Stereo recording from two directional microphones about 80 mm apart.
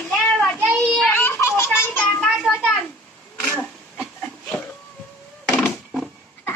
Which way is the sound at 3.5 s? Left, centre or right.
Left.